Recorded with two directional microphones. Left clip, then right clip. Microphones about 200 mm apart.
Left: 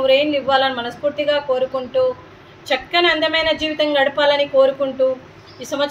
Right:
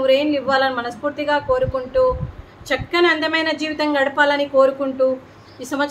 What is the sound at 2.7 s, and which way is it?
A woman's voice, 15° right (ahead or behind).